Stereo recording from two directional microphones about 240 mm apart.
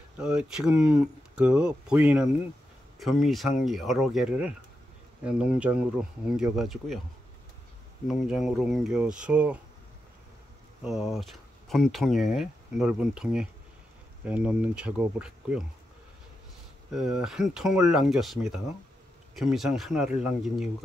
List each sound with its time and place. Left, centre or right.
0.2 s speech: centre
8.1 s speech: centre
10.8 s speech: centre
16.9 s speech: centre